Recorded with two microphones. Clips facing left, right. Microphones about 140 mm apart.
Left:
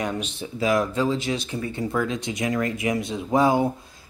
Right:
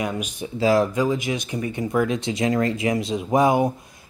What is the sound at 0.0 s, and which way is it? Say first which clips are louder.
Speech: right 1 dB; 10° right (ahead or behind).